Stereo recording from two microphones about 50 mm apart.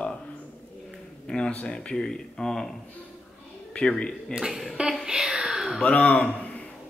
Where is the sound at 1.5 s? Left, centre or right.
Left; by 2.7 s centre.